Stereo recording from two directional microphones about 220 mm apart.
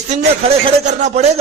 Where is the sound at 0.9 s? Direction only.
30° right (ahead or behind).